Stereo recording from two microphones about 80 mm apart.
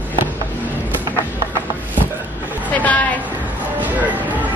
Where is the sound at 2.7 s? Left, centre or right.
Centre.